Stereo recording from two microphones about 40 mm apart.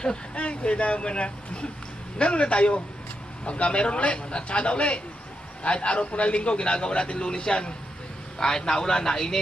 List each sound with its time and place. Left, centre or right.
0.0 s a man's voice: left